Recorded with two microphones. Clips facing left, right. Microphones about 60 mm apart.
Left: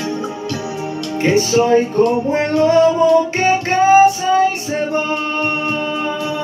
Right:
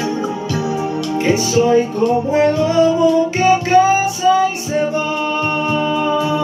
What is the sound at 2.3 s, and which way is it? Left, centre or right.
Music, left.